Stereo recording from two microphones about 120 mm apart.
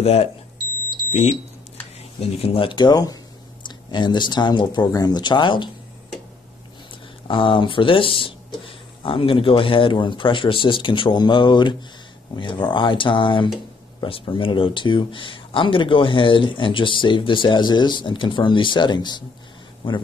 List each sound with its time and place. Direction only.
0.0 s speech: 60° left (ahead or behind)
2.1 s speech: 55° left (ahead or behind)
7.2 s speech: 45° left (ahead or behind)